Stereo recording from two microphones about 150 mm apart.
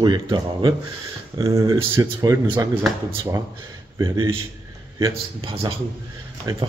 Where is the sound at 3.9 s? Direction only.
30° right (ahead or behind).